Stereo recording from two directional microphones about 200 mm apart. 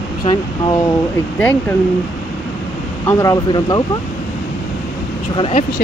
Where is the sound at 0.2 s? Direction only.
20° left (ahead or behind).